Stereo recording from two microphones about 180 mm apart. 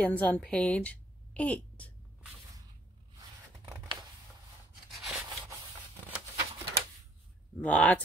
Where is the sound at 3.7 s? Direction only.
20° right (ahead or behind).